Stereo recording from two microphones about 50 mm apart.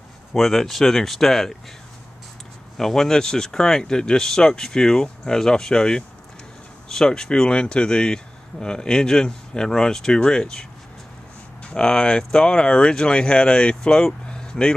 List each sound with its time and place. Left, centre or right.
0.3 s speech: centre
2.8 s speech: centre